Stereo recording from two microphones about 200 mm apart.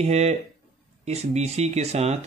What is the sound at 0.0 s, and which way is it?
Speech, 35° right (ahead or behind).